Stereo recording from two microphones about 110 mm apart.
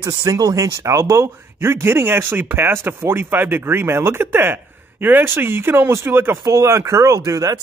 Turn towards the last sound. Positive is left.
turn(degrees=-30)  # may be behind; listen again after turning